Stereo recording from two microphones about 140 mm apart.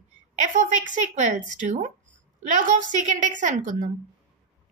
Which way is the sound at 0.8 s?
60° right (ahead or behind).